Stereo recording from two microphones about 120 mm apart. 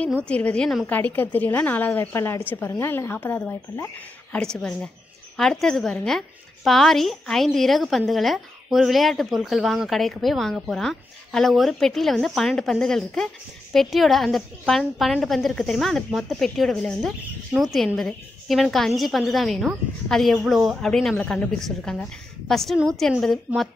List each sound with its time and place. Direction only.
0.3 s a woman's voice: 10° left (ahead or behind)
4.4 s a woman's voice: 5° left (ahead or behind)